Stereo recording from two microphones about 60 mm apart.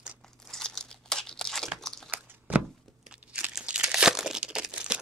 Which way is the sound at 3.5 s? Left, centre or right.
Centre.